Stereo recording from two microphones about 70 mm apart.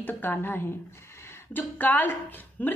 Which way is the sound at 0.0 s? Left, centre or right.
Left.